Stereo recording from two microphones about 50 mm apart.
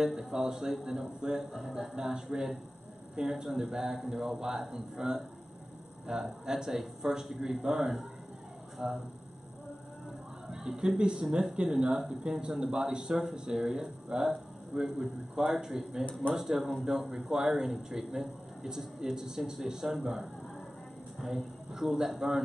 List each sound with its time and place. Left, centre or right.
0.0 s speech: centre
10.5 s speech: centre
11.5 s speech: right